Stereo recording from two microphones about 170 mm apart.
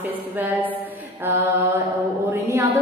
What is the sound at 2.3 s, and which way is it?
Speech, 15° right (ahead or behind).